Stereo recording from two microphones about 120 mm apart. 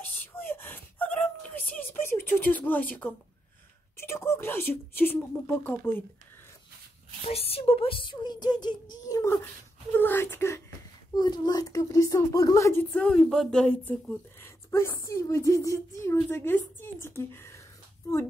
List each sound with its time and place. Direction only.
0.1 s whimper: 15° left (ahead or behind)
3.9 s speech: 20° left (ahead or behind)
7.2 s speech: 55° left (ahead or behind); by 10.6 s 20° left (ahead or behind)
11.1 s speech: 35° left (ahead or behind)
12.9 s a woman's voice: 10° left (ahead or behind)